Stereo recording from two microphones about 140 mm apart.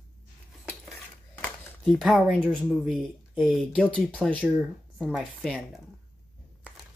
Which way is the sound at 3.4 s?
Centre (ahead or behind).